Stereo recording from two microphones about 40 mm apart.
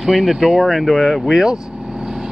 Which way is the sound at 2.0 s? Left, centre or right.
Centre.